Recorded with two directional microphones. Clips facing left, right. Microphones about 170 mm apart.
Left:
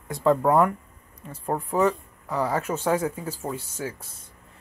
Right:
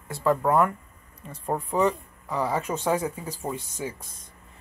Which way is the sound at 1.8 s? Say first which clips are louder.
Left 1 dB; 10° right (ahead or behind).